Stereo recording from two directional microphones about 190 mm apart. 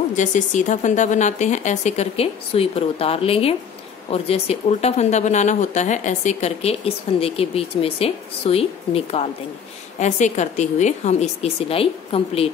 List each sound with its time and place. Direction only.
0.1 s speech: 40° left (ahead or behind)